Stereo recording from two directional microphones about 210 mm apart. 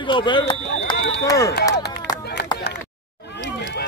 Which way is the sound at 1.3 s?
15° left (ahead or behind).